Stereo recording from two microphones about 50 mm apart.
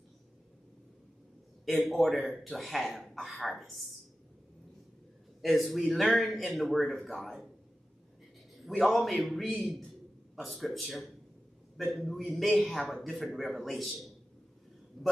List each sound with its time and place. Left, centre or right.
1.7 s speech: centre
5.4 s speech: centre
8.6 s speech: centre